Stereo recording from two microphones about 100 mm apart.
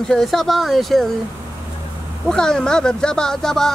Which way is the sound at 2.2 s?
5° left (ahead or behind).